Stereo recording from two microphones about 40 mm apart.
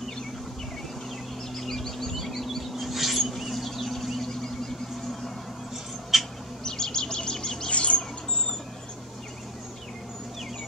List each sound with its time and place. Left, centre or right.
1.6 s bird: centre
2.7 s a sound: centre
6.1 s bird: centre
6.6 s bird: centre
7.7 s bird: left